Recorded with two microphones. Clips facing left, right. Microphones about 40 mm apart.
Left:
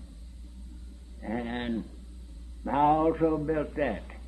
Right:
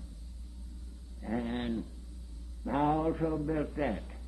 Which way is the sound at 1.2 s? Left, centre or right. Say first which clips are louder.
Left 2 dB; centre.